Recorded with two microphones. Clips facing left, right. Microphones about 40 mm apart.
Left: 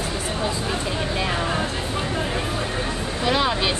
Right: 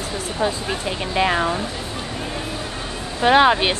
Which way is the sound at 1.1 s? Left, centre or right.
Right.